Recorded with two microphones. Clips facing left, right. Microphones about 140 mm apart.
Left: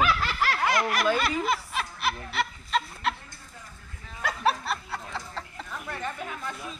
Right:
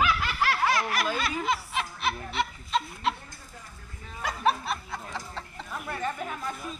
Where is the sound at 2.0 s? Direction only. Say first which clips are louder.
Left 1 dB; 5° left (ahead or behind).